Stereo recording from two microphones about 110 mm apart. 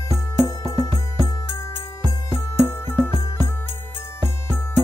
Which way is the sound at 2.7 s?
20° left (ahead or behind).